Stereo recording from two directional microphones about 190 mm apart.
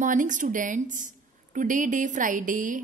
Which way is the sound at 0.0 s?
40° right (ahead or behind).